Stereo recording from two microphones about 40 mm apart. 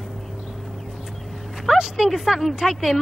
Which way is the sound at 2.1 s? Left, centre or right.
Centre.